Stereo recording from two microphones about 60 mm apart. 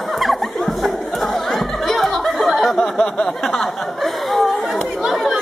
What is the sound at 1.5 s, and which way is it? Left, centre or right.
Laughter, centre.